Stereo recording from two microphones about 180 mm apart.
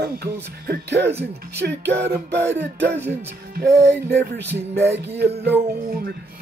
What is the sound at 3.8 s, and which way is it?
Music, 70° right (ahead or behind).